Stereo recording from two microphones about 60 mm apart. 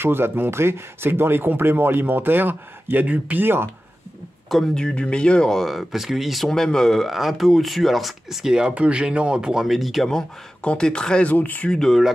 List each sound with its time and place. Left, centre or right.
0.0 s speech: right
4.7 s speech: centre
10.0 s speech: centre
11.2 s speech: left
11.7 s speech: centre